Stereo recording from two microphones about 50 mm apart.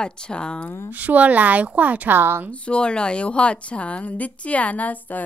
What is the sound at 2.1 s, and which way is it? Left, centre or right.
Speech, right.